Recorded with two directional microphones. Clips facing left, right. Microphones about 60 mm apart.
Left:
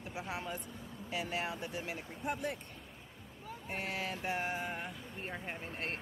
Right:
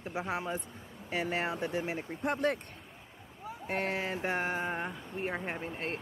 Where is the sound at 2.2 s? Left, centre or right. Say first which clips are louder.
Right 7 dB; right.